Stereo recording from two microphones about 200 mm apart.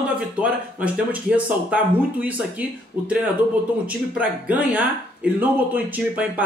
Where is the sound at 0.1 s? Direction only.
5° right (ahead or behind).